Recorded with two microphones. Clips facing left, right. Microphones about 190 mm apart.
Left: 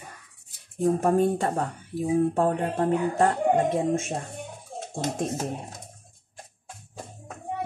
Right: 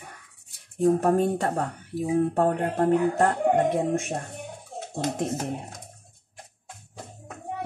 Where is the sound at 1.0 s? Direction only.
55° right (ahead or behind).